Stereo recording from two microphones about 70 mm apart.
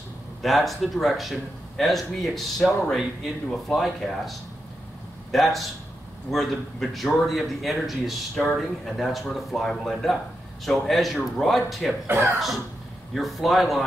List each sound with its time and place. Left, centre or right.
0.4 s a man's voice: centre
12.1 s speech: right
13.1 s a man's voice: centre